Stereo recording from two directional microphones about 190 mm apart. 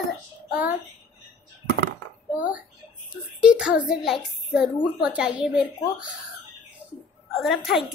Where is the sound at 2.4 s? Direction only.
5° right (ahead or behind).